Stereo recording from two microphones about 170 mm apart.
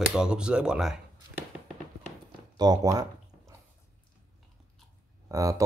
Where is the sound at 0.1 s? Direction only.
5° right (ahead or behind).